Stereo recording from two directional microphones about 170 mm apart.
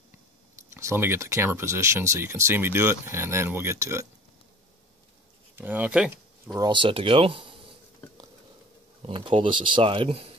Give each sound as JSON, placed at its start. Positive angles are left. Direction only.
{"t": 0.6, "sound": "speech", "side_deg": -15}
{"t": 5.6, "sound": "speech", "side_deg": -10}
{"t": 6.5, "sound": "speech", "side_deg": -25}
{"t": 9.0, "sound": "speech", "side_deg": -30}